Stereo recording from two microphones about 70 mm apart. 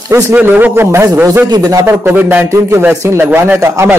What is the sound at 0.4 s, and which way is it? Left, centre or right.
Speech, right.